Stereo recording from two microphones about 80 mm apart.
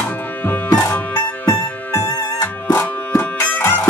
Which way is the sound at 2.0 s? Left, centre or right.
Left.